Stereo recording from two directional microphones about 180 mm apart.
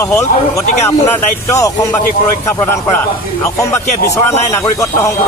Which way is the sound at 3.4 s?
15° left (ahead or behind).